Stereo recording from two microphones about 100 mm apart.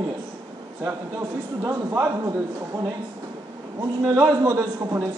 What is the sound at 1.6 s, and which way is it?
Speech, 30° right (ahead or behind).